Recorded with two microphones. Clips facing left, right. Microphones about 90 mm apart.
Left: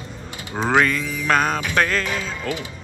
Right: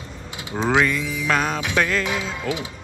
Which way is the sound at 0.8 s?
10° right (ahead or behind).